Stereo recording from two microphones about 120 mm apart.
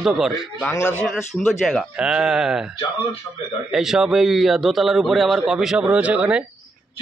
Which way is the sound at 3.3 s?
20° left (ahead or behind).